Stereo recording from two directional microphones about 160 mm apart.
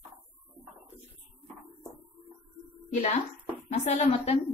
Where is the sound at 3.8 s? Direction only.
40° left (ahead or behind).